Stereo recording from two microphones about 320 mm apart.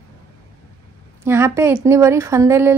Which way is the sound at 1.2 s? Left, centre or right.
Centre.